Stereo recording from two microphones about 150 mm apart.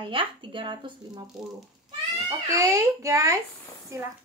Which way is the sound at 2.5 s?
20° right (ahead or behind).